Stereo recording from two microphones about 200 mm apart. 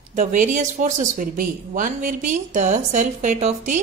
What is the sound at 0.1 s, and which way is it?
Speech, 40° right (ahead or behind).